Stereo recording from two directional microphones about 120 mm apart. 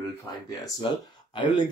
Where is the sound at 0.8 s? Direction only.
45° left (ahead or behind).